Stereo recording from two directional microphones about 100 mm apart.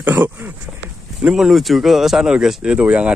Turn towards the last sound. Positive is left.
turn(degrees=-10)  # may be behind; listen again after turning